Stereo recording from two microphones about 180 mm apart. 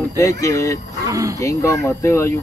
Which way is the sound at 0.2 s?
15° left (ahead or behind).